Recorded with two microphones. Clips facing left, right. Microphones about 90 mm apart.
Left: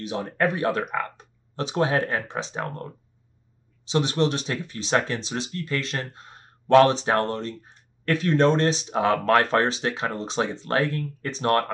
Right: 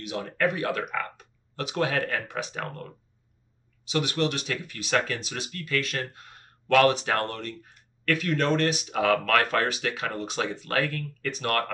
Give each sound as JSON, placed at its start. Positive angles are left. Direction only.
{"t": 0.0, "sound": "speech", "side_deg": 30}